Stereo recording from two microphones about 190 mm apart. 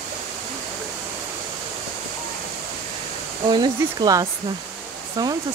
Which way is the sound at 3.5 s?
20° right (ahead or behind).